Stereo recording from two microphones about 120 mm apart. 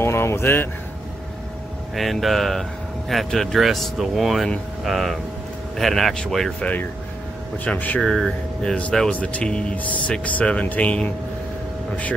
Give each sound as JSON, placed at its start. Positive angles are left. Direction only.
{"t": 0.0, "sound": "speech", "side_deg": 20}
{"t": 2.0, "sound": "speech", "side_deg": 0}